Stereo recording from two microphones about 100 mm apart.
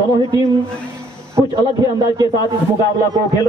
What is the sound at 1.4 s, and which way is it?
Speech, 35° right (ahead or behind).